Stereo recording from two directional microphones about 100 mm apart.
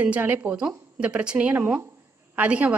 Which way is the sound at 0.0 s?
15° right (ahead or behind).